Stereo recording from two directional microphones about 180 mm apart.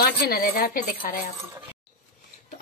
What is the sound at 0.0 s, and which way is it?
A woman's voice, 55° left (ahead or behind).